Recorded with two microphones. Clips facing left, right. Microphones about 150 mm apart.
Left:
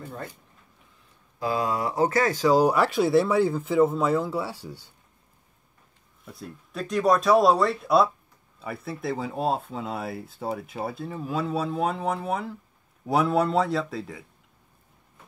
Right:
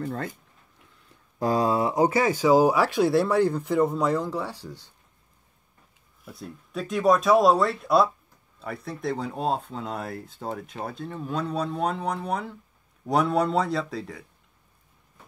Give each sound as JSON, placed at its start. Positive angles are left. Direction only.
{"t": 0.0, "sound": "speech", "side_deg": -80}
{"t": 1.4, "sound": "speech", "side_deg": -35}
{"t": 6.2, "sound": "speech", "side_deg": 0}